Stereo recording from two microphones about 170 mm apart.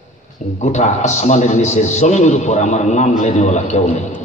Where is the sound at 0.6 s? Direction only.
45° left (ahead or behind).